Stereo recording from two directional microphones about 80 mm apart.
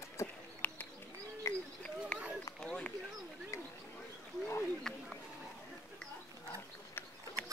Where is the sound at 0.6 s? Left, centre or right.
Left.